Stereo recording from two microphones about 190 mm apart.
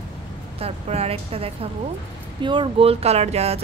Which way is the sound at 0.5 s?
30° right (ahead or behind).